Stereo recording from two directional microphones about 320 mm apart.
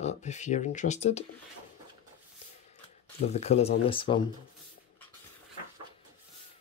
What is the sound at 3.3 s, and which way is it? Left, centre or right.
Speech, centre.